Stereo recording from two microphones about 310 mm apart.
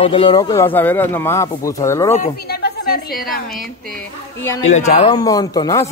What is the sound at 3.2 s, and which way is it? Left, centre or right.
Speech, left.